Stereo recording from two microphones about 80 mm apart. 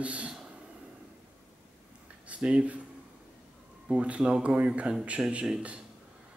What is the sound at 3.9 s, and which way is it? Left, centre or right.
Speech, centre.